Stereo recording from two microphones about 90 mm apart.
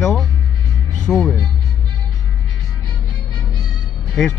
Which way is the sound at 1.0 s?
5° left (ahead or behind).